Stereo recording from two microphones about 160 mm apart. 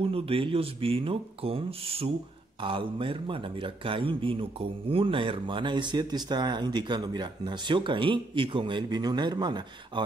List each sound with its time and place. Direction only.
0.0 s a man's voice: 35° right (ahead or behind)